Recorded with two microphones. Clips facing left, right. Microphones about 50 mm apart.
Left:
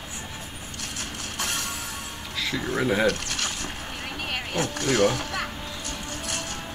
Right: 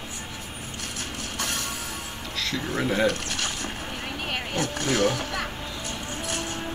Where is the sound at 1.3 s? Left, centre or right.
Centre.